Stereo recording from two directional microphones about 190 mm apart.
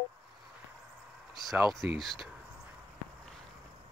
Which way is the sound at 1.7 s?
Centre (ahead or behind).